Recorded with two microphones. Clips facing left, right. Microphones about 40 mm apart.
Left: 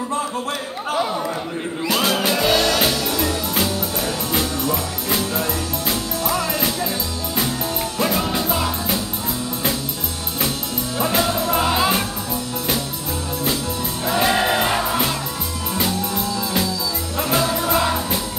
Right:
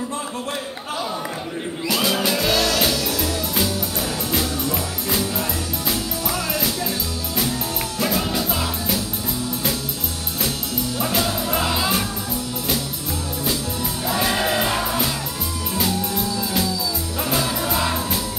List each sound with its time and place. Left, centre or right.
1.9 s music: left; by 6.4 s centre
8.0 s music: centre
11.0 s music: centre
14.0 s music: centre
17.2 s music: centre